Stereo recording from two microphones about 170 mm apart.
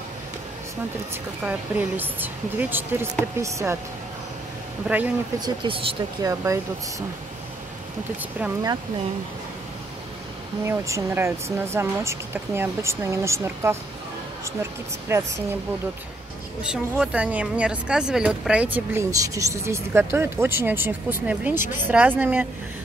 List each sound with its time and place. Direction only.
1.4 s speech: 10° right (ahead or behind)
4.8 s speech: 10° right (ahead or behind)
5.4 s speech: 30° right (ahead or behind)
6.2 s speech: 20° right (ahead or behind)
10.6 s speech: 15° right (ahead or behind)
16.7 s speech: 5° right (ahead or behind)